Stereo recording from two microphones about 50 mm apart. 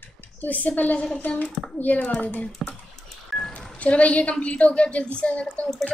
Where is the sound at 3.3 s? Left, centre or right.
Centre.